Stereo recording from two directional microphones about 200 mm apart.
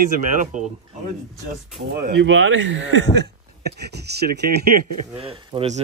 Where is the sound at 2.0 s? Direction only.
60° right (ahead or behind).